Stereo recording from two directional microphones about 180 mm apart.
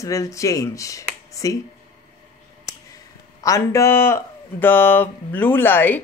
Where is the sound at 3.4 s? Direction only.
15° left (ahead or behind).